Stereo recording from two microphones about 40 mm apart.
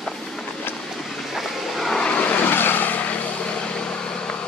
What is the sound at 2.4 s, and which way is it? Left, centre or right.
Vehicle, left.